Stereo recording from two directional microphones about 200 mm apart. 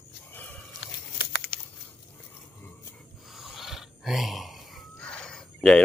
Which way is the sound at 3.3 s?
Centre (ahead or behind).